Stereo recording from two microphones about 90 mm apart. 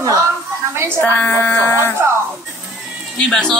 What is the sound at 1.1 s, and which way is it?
Speech, 20° left (ahead or behind).